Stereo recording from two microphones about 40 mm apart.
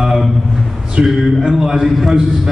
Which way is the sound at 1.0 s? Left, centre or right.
Centre.